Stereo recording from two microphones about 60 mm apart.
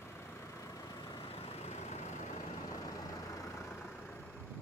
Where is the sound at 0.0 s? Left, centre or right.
Left.